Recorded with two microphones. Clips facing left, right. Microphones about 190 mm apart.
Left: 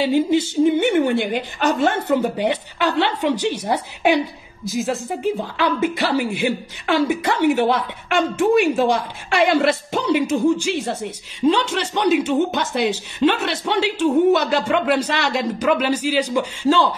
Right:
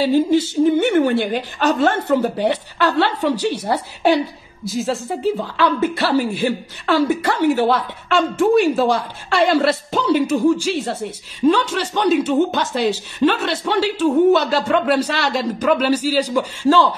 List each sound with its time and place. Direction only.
0.0 s a woman's voice: 15° left (ahead or behind)